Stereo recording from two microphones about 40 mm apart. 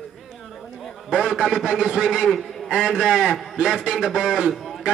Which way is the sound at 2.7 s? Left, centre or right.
Centre.